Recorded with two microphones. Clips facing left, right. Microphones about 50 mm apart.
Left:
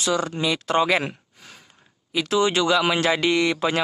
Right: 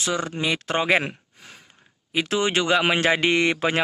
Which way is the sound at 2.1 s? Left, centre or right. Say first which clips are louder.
Left 2 dB; right.